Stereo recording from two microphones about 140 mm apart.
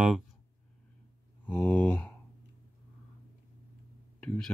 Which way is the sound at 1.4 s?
10° left (ahead or behind).